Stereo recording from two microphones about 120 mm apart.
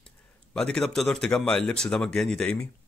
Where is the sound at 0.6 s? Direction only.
5° left (ahead or behind).